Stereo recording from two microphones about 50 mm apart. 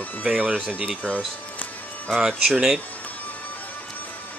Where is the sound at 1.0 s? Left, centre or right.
Left.